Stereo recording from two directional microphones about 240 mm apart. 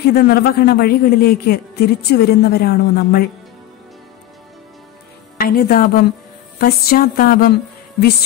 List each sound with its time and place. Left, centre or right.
0.0 s a man's voice: left
5.4 s a man's voice: left